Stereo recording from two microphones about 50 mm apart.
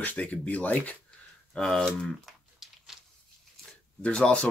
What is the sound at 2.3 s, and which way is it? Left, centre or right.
Crumpling, centre.